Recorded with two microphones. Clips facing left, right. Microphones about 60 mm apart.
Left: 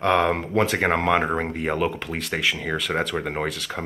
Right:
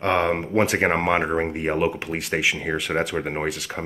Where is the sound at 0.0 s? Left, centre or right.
Centre.